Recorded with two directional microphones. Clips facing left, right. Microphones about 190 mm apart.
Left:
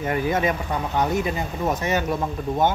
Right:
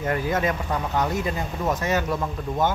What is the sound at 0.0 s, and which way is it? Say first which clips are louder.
Speech: left 2 dB; 15° left (ahead or behind).